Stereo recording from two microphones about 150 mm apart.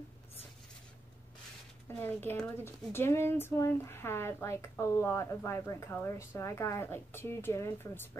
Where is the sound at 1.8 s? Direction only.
15° left (ahead or behind).